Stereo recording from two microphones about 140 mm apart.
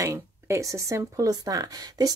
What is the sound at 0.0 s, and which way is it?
Speech, 20° right (ahead or behind).